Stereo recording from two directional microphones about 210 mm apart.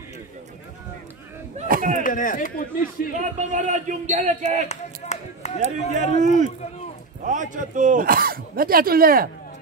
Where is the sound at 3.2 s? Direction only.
35° right (ahead or behind).